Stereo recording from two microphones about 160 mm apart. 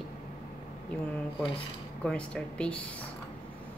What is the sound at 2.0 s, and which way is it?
Speech, 5° left (ahead or behind).